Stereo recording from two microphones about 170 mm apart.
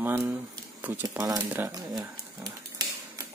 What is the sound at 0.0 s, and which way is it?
Speech, 10° right (ahead or behind).